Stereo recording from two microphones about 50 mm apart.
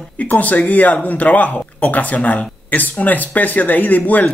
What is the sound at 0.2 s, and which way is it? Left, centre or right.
Speech, left.